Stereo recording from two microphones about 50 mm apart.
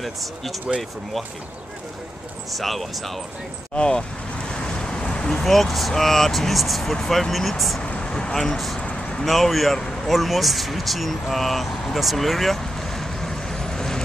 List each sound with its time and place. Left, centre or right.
0.0 s speech: centre
2.5 s speech: centre
3.7 s speech: centre
4.5 s vehicle: centre
5.4 s speech: centre
7.8 s speech: centre
8.7 s a sound: centre
9.2 s speech: centre